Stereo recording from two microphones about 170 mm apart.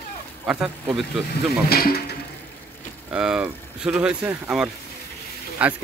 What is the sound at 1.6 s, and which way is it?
Speech, 65° left (ahead or behind).